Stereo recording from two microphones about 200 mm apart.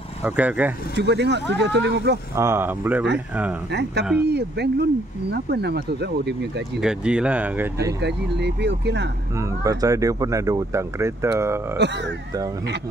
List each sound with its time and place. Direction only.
0.2 s speech: 10° right (ahead or behind)
0.9 s speech: 55° right (ahead or behind)
2.3 s speech: 15° right (ahead or behind)
4.3 s speech: 55° right (ahead or behind)
6.8 s speech: 5° right (ahead or behind)
8.0 s speech: 60° right (ahead or behind)
9.4 s speech: 15° right (ahead or behind)